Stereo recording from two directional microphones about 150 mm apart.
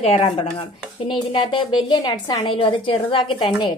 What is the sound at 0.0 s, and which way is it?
A woman's voice, 40° left (ahead or behind).